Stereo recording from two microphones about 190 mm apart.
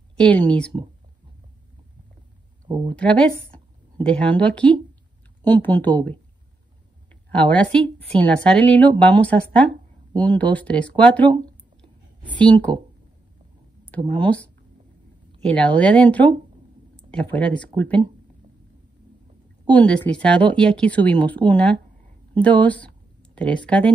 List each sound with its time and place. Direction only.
0.1 s speech: 5° left (ahead or behind)
2.7 s speech: 20° right (ahead or behind)
4.0 s speech: 5° left (ahead or behind)
7.1 s speech: 5° left (ahead or behind)
12.4 s speech: 5° left (ahead or behind)
13.8 s speech: 10° left (ahead or behind)
19.7 s speech: 5° left (ahead or behind)